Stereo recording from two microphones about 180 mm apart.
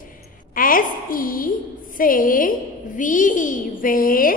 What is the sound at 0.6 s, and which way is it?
A woman's voice, 50° left (ahead or behind).